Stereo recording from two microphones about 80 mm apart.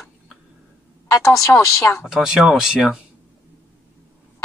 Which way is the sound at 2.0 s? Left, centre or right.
Centre.